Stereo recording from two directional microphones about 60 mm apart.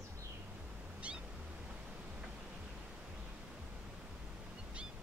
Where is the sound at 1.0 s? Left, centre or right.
Centre.